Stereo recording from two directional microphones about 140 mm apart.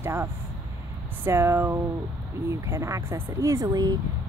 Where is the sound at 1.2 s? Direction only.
20° right (ahead or behind).